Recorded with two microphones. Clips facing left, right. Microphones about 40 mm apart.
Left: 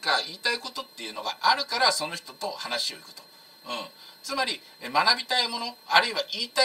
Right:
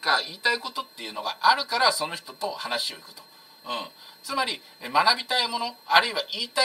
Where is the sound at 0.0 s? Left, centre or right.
Centre.